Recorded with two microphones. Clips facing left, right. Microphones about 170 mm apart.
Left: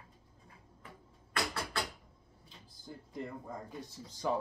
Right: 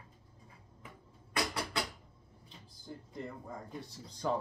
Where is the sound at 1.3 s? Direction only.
15° right (ahead or behind).